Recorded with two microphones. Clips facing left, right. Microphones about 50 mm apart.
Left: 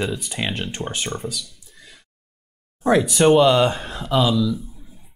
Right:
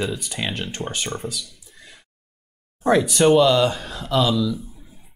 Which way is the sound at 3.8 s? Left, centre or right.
Centre.